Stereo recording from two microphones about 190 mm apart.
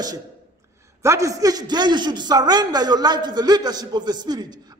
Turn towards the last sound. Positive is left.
turn(degrees=-20)  # may be behind; listen again after turning